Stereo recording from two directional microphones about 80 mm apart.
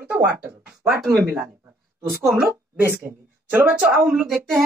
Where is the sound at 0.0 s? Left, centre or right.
Right.